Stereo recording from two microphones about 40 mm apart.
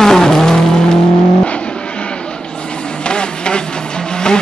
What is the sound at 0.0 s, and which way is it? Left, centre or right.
Vehicle, centre.